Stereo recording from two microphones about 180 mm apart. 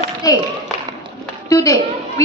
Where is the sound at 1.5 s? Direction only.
20° left (ahead or behind).